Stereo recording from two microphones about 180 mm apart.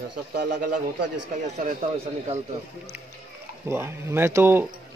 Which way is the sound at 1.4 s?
40° right (ahead or behind).